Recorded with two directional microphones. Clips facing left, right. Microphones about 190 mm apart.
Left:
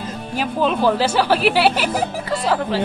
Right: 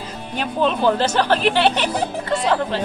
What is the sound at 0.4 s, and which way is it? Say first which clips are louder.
Speech: left 1 dB; 5° left (ahead or behind).